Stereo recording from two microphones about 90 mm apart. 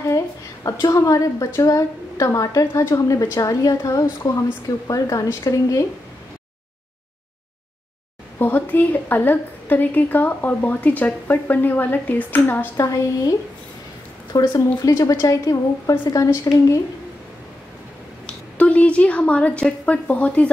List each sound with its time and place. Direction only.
0.7 s a woman's voice: 35° left (ahead or behind)
8.4 s a woman's voice: 20° left (ahead or behind)
12.7 s a woman's voice: 40° left (ahead or behind)
14.3 s a woman's voice: 45° left (ahead or behind)
18.2 s a woman's voice: 15° left (ahead or behind)